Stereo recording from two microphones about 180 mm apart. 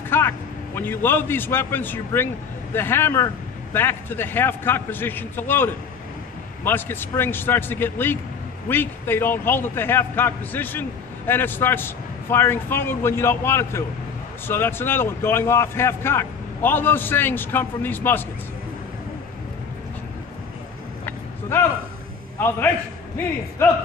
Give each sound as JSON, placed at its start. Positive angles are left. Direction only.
{"t": 0.1, "sound": "vehicle", "side_deg": 10}
{"t": 0.7, "sound": "a man's voice", "side_deg": 10}
{"t": 21.0, "sound": "vehicle", "side_deg": 15}